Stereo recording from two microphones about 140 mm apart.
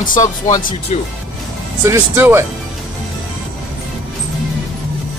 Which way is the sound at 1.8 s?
20° right (ahead or behind).